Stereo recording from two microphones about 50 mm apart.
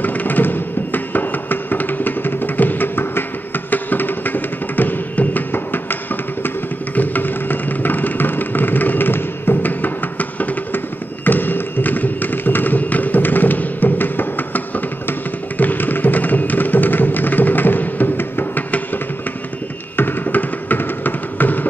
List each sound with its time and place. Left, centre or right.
0.0 s music: left
7.0 s music: left
11.2 s a sound: left
15.0 s music: left
20.0 s music: left